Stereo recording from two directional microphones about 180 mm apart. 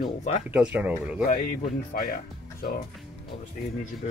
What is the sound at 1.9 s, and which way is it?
Speech, 55° left (ahead or behind).